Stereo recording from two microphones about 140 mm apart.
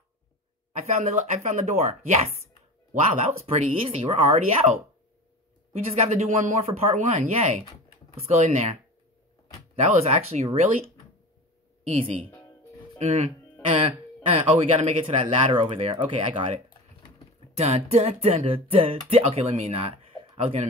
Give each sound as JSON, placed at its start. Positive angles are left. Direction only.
{"t": 0.7, "sound": "speech", "side_deg": -55}
{"t": 9.8, "sound": "speech", "side_deg": -50}
{"t": 13.1, "sound": "speech", "side_deg": -45}
{"t": 17.6, "sound": "speech", "side_deg": -50}